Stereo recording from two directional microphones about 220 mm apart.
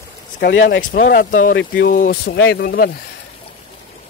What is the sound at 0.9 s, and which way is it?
Speech, 40° left (ahead or behind).